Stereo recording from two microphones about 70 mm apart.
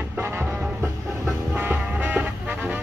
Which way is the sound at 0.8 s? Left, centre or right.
Right.